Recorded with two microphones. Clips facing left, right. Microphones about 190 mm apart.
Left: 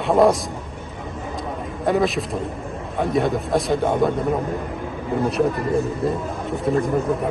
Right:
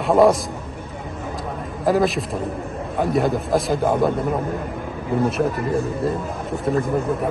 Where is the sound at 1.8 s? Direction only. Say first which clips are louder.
Right 1 dB; centre (ahead or behind).